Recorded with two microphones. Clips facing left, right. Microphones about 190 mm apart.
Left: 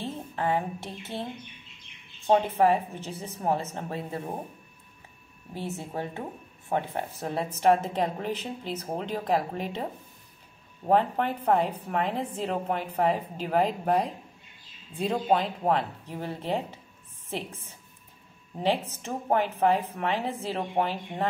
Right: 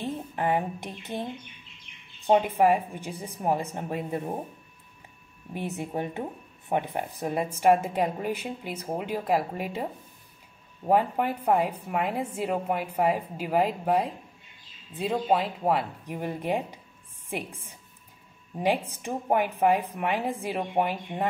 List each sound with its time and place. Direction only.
0.0 s a woman's voice: 15° right (ahead or behind)
2.2 s a woman's voice: 15° right (ahead or behind)
5.5 s a woman's voice: 20° right (ahead or behind)
10.9 s a woman's voice: 10° right (ahead or behind)